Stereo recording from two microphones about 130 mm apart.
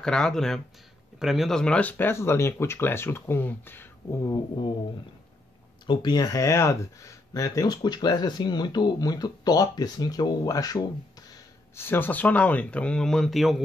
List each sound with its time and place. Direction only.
0.0 s speech: 5° left (ahead or behind); by 4.4 s 25° left (ahead or behind)
5.9 s speech: 35° left (ahead or behind)
11.7 s speech: 15° left (ahead or behind); by 13.6 s centre (ahead or behind)